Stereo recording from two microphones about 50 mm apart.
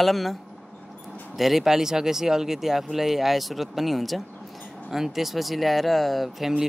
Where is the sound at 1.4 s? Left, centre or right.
Centre.